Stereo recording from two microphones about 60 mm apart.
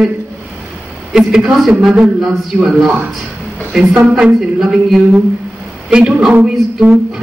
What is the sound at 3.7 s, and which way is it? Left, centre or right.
Speech, right.